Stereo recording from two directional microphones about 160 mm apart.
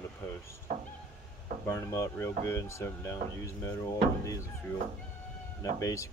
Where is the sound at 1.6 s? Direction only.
20° left (ahead or behind).